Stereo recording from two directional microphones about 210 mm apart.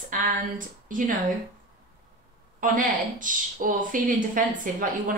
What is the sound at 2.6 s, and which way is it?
A woman's voice, 40° right (ahead or behind).